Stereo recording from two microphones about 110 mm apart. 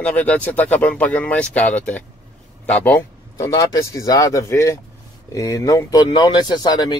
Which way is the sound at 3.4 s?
35° left (ahead or behind).